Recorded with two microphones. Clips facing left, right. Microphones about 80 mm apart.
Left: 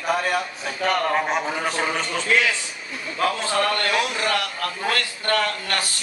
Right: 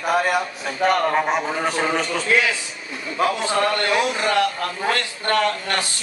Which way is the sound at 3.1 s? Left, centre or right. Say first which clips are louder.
Right 2 dB; centre.